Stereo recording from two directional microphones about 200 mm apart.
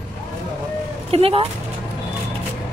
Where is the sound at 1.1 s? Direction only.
30° right (ahead or behind).